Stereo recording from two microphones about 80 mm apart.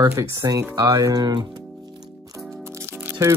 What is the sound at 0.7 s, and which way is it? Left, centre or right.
Speech, right.